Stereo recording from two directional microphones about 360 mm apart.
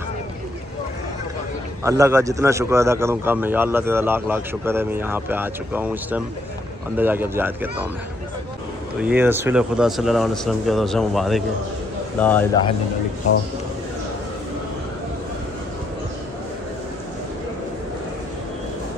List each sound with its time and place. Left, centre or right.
1.8 s speech: centre
9.0 s speech: centre